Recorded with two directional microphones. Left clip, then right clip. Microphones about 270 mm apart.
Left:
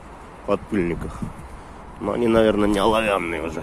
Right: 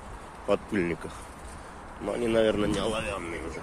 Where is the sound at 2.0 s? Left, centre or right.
Centre.